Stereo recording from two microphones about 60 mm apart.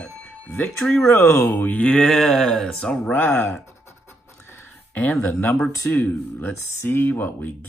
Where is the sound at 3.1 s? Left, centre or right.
Left.